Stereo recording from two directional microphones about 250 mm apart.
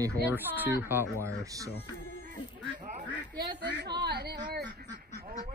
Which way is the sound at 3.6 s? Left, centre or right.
Right.